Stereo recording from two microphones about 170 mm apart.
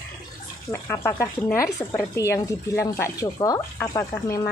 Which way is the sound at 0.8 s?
15° left (ahead or behind).